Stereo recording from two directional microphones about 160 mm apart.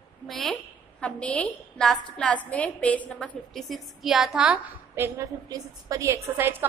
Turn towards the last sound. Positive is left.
turn(degrees=-15)  # may be behind; listen again after turning